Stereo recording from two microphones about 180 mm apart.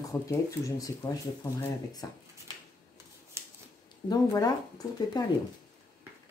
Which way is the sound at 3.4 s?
15° right (ahead or behind).